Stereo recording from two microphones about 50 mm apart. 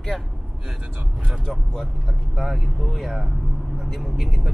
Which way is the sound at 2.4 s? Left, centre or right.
Centre.